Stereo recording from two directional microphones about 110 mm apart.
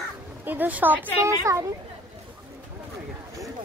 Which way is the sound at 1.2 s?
25° right (ahead or behind).